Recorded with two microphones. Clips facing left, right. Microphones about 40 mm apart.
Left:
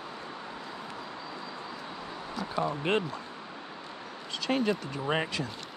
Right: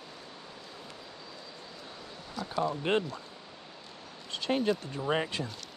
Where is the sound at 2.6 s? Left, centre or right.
Centre.